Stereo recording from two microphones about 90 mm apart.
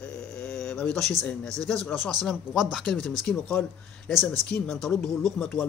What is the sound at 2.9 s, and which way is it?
Speech, 10° left (ahead or behind).